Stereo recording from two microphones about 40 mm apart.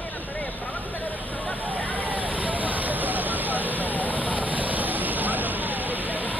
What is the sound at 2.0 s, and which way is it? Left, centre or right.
Fire, right.